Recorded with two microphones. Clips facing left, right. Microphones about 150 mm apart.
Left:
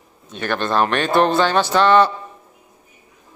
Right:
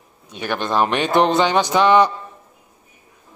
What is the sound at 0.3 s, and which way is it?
Music, 10° right (ahead or behind).